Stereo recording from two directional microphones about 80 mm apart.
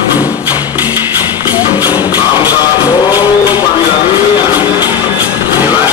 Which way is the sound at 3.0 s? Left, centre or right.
Left.